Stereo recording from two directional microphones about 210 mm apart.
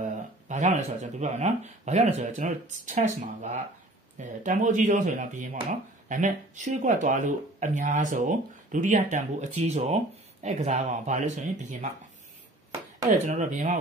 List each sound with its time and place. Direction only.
0.0 s speech: 35° right (ahead or behind)
13.0 s speech: 35° right (ahead or behind)